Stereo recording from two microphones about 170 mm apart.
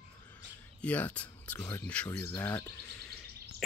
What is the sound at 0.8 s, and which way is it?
Speech, 10° left (ahead or behind).